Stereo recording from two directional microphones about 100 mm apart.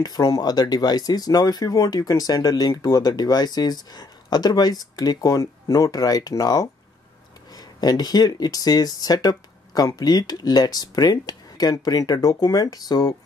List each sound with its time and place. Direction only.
0.0 s speech: 40° left (ahead or behind)